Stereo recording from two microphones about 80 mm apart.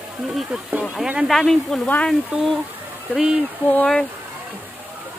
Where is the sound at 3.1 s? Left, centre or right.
Centre.